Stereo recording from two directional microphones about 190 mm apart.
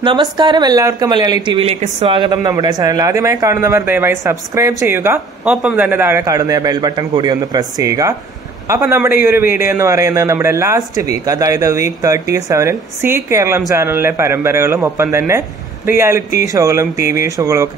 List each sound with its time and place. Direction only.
0.0 s a woman's voice: 25° right (ahead or behind)